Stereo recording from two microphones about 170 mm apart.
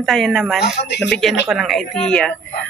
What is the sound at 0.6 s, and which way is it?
Speech, 90° left.